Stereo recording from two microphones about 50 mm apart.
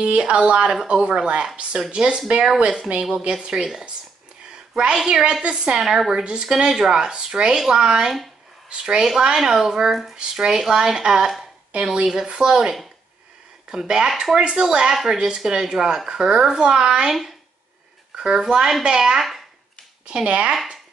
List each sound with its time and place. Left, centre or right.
0.0 s speech: right
4.9 s speech: centre
5.8 s a woman's voice: centre
6.2 s speech: centre
6.7 s speech: centre
20.1 s speech: right